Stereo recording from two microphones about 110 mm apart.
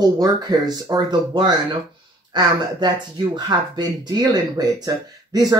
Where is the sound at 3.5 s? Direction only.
40° right (ahead or behind).